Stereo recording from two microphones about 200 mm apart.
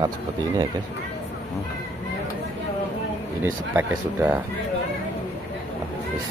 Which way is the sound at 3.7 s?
10° right (ahead or behind).